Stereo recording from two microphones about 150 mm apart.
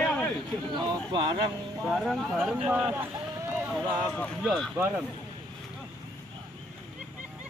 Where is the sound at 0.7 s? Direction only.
30° right (ahead or behind).